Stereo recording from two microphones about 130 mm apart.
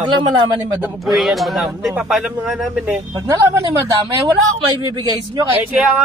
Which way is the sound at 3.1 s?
25° right (ahead or behind).